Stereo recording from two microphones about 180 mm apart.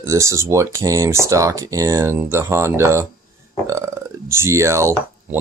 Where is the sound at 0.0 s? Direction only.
15° right (ahead or behind).